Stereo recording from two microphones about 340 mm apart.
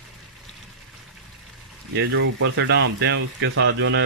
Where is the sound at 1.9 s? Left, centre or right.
Right.